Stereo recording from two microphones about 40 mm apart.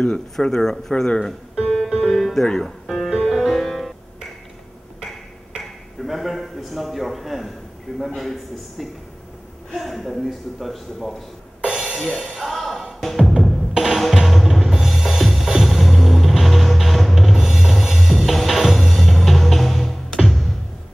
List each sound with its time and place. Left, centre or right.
0.0 s speech: left
0.5 s speech: centre
2.1 s music: centre
2.5 s speech: centre
3.2 s music: centre
5.6 s a sound: centre
8.2 s a man's voice: centre
11.7 s music: centre